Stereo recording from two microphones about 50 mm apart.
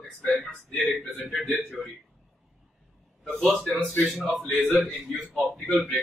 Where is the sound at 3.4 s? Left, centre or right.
Centre.